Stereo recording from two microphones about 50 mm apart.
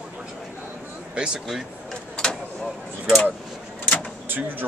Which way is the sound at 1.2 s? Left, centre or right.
Right.